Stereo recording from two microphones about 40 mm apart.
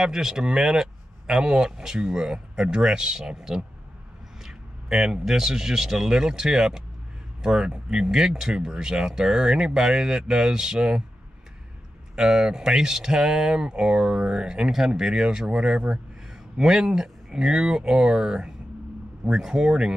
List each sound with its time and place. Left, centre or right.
0.0 s speech: centre
12.2 s speech: centre